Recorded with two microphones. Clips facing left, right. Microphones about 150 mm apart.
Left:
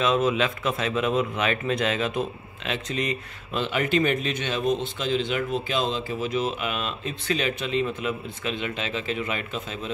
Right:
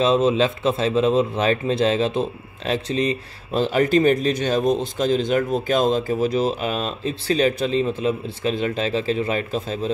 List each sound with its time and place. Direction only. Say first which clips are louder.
0.0 s speech: right 5 dB; 30° right (ahead or behind)